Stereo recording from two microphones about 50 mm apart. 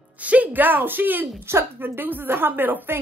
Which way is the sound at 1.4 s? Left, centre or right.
Right.